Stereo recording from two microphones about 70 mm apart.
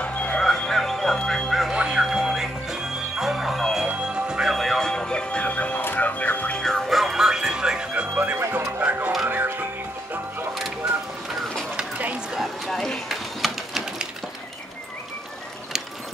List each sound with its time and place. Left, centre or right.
0.0 s music: centre
0.5 s music: centre
1.5 s a sound: centre
1.8 s music: centre; by 6.6 s left
6.6 s music: centre
8.1 s music: right
12.3 s a sound: centre